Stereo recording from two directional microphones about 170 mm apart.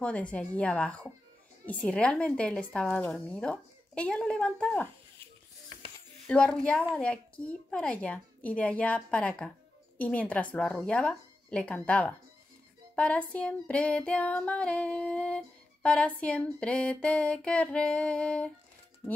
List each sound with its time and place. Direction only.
0.0 s female singing: 5° left (ahead or behind)
1.7 s a woman's voice: 5° left (ahead or behind)
6.2 s a woman's voice: 5° left (ahead or behind)
7.0 s female singing: 5° left (ahead or behind)
19.0 s speech: 25° left (ahead or behind)